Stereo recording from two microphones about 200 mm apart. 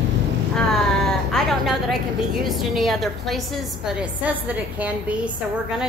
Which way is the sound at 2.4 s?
Centre (ahead or behind).